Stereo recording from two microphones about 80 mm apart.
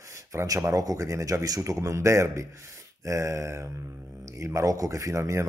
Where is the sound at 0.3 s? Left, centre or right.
Right.